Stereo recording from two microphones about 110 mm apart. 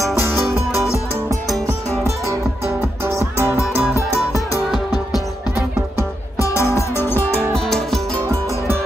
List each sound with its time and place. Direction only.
3.0 s music: 30° right (ahead or behind)
3.3 s music: 25° left (ahead or behind)
6.3 s music: 25° left (ahead or behind)
7.5 s music: centre (ahead or behind)